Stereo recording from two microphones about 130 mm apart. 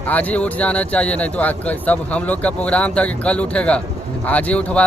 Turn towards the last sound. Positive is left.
turn(degrees=10)  # may be behind; listen again after turning